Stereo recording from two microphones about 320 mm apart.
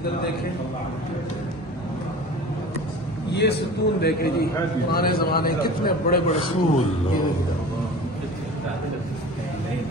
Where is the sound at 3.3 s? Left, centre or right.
Left.